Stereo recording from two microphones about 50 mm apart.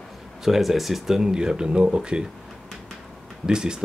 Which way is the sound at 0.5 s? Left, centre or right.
Centre.